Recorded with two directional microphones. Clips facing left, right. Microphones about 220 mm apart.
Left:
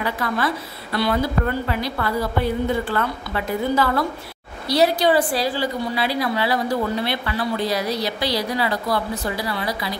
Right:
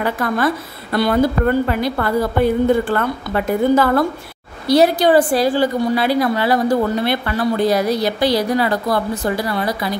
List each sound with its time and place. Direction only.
0.0 s a woman's voice: 50° right (ahead or behind)